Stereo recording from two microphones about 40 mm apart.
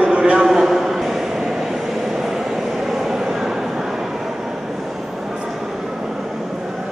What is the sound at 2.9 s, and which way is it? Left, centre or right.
Vehicle, centre.